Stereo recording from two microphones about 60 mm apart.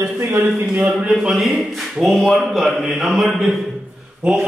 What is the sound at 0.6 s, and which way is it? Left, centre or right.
A man's voice, centre.